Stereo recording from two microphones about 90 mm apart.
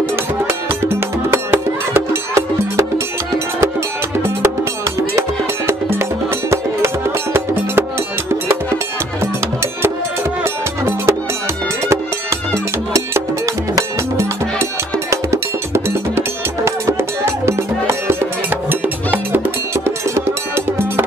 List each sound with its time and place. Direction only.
0.5 s music: 25° right (ahead or behind)
5.7 s music: 25° right (ahead or behind)
10.4 s music: 30° right (ahead or behind)
13.7 s music: 35° right (ahead or behind)